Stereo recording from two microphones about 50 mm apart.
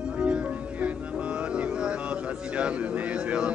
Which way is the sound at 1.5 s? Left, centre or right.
Centre.